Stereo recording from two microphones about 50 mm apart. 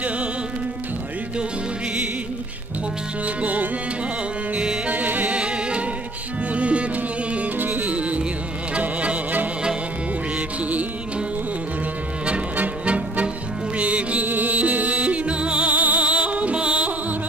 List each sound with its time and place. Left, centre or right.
4.6 s music: right
4.9 s music: right
5.3 s music: right
7.5 s music: right
12.5 s music: right